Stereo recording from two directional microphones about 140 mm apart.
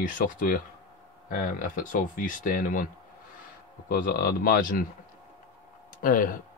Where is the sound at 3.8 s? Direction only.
80° left.